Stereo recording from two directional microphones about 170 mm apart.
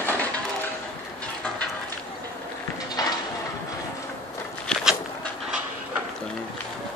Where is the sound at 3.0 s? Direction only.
20° left (ahead or behind).